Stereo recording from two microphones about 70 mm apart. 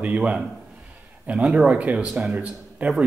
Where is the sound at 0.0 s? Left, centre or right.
Centre.